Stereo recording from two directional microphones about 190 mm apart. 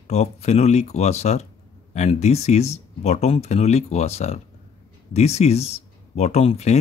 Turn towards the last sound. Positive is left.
turn(degrees=35)  # may be behind; listen again after turning